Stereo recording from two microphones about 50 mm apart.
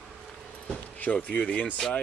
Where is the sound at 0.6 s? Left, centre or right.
Left.